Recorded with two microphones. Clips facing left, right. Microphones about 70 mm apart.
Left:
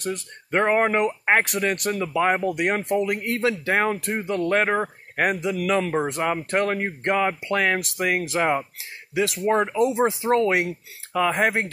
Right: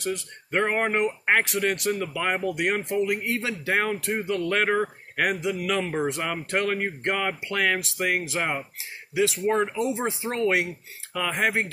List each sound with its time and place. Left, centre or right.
0.0 s speech: left